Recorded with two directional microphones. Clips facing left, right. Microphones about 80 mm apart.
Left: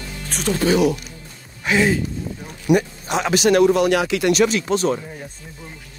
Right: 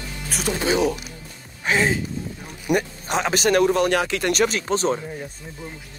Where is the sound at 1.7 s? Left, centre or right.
Right.